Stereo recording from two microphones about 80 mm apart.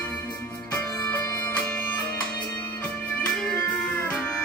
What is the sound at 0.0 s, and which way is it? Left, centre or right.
Music, centre.